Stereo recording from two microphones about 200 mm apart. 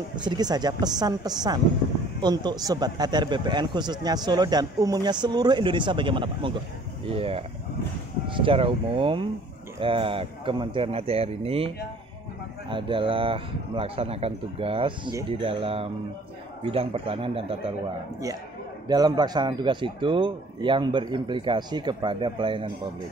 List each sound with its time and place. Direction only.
0.1 s speech: 20° right (ahead or behind)
18.9 s speech: 20° right (ahead or behind)